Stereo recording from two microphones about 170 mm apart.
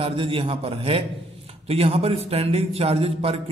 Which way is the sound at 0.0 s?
30° right (ahead or behind).